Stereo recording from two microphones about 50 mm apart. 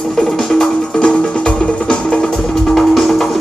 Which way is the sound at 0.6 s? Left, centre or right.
Centre.